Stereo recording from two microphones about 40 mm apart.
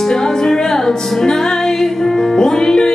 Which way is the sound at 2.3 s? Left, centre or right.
Centre.